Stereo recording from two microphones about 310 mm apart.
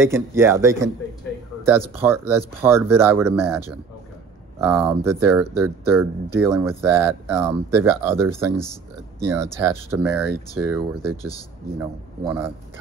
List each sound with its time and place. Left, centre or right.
0.0 s speech: centre
2.0 s speech: centre
11.8 s speech: centre